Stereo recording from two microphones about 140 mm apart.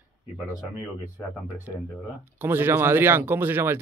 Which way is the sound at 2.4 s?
15° right (ahead or behind).